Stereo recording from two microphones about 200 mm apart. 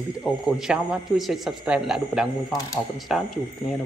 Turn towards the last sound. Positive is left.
turn(degrees=0)  # may be behind; listen again after turning